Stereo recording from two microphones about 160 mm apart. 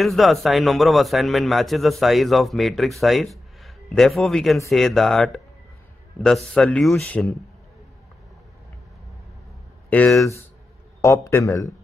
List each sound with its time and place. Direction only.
0.0 s a man's voice: centre (ahead or behind)
9.8 s speech: 10° left (ahead or behind)
11.2 s a man's voice: 20° left (ahead or behind)